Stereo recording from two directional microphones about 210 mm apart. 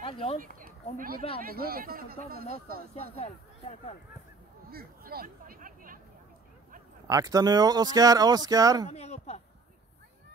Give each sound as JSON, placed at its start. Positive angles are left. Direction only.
{"t": 0.0, "sound": "a sound", "side_deg": 25}
{"t": 0.4, "sound": "speech", "side_deg": -40}
{"t": 2.9, "sound": "speech", "side_deg": 30}
{"t": 4.6, "sound": "a sound", "side_deg": -45}
{"t": 7.1, "sound": "speech", "side_deg": -15}
{"t": 8.8, "sound": "speech", "side_deg": 30}